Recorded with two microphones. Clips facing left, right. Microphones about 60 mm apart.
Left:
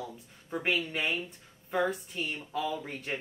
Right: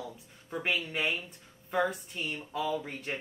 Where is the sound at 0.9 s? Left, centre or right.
Centre.